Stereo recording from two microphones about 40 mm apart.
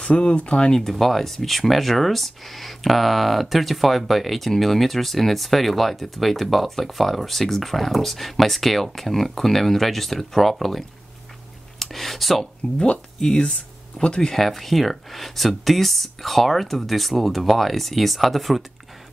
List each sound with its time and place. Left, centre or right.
0.0 s speech: left
0.7 s speech: centre
12.7 s speech: left
14.3 s speech: centre